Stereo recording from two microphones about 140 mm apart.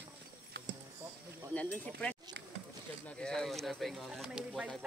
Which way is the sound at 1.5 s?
10° left (ahead or behind).